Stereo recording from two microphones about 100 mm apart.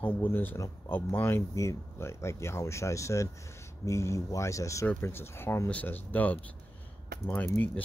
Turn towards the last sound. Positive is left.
turn(degrees=20)  # may be behind; listen again after turning